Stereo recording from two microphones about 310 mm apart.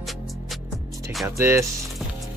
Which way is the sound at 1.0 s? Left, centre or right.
Centre.